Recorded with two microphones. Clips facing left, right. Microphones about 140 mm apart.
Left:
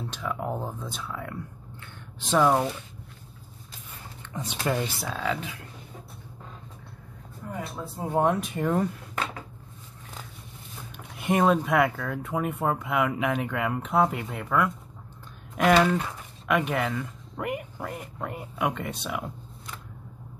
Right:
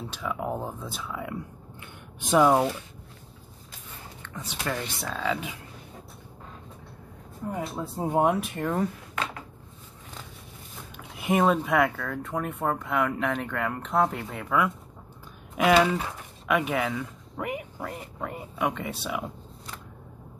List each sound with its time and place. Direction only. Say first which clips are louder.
0.1 s speech: right 1 dB; 5° right (ahead or behind)
4.5 s speech: left 4 dB; 15° left (ahead or behind)
5.0 s speech: even; centre (ahead or behind)
7.7 s speech: even; 20° right (ahead or behind); by 8.8 s centre (ahead or behind)
11.1 s speech: left 1 dB; centre (ahead or behind)